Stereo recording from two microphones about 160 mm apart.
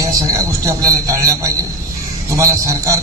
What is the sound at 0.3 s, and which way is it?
A man's voice, 20° right (ahead or behind).